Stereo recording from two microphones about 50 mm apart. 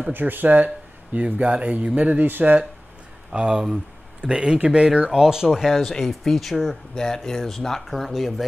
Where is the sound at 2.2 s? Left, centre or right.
Right.